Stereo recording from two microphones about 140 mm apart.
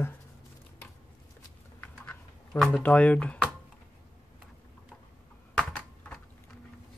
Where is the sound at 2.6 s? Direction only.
10° left (ahead or behind).